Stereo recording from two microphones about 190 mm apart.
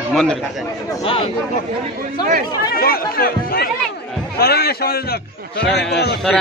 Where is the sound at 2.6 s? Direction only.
50° left (ahead or behind).